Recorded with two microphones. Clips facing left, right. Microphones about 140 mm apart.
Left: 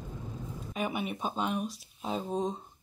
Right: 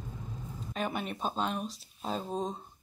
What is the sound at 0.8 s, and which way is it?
Speech, 10° left (ahead or behind).